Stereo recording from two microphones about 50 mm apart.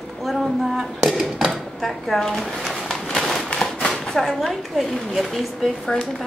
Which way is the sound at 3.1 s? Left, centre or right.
Centre.